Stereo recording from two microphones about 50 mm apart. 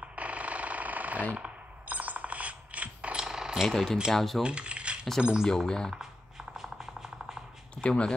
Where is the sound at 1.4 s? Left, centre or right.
Right.